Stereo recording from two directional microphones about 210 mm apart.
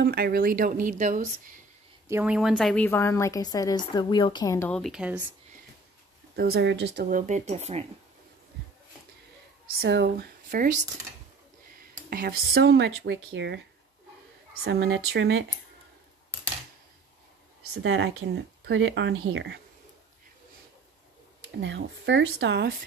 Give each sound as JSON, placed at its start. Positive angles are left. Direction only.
{"t": 0.0, "sound": "speech", "side_deg": -45}
{"t": 2.0, "sound": "a woman's voice", "side_deg": -10}
{"t": 6.3, "sound": "speech", "side_deg": -50}
{"t": 7.1, "sound": "speech", "side_deg": -35}
{"t": 9.8, "sound": "speech", "side_deg": -50}
{"t": 12.1, "sound": "speech", "side_deg": -45}
{"t": 14.6, "sound": "speech", "side_deg": -50}
{"t": 17.8, "sound": "speech", "side_deg": -55}
{"t": 21.5, "sound": "speech", "side_deg": -55}